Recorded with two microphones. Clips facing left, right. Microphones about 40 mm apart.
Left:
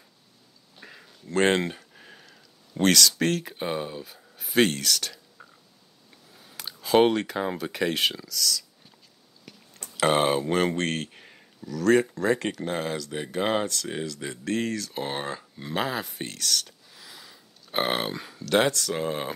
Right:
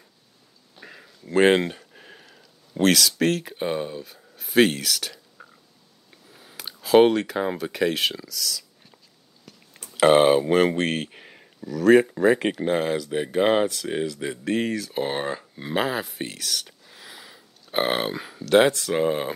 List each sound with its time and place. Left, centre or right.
0.7 s a sound: centre
1.2 s speech: centre
9.8 s speech: centre
15.8 s speech: centre
16.8 s burping: right
17.7 s speech: centre
18.7 s speech: centre